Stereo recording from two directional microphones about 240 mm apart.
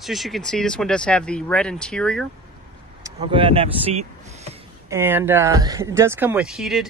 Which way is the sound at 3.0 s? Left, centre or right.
Right.